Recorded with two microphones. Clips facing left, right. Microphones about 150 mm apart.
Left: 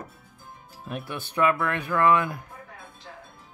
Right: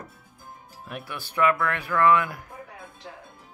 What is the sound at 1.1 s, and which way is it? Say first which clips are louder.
Speech: even; 20° left (ahead or behind).